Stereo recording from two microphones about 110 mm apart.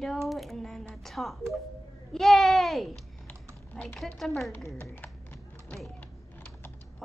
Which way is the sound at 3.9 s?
5° left (ahead or behind).